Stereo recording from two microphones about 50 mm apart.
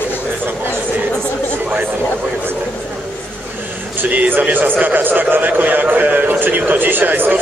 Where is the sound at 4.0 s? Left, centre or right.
Right.